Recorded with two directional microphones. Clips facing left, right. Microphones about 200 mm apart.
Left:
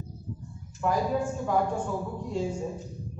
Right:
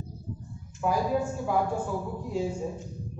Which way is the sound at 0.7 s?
10° right (ahead or behind).